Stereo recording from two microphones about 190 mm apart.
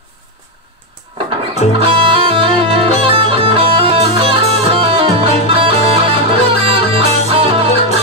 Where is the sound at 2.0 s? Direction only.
25° right (ahead or behind).